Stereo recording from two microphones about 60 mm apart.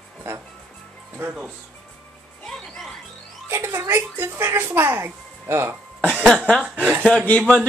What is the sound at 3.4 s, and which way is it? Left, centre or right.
Speech, right.